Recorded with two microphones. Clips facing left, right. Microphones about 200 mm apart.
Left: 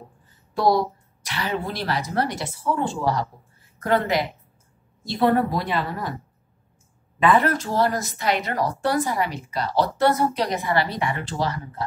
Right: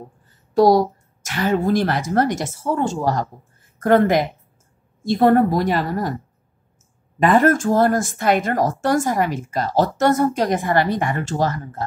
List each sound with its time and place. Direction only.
0.6 s speech: 45° right (ahead or behind)
7.2 s speech: 45° right (ahead or behind)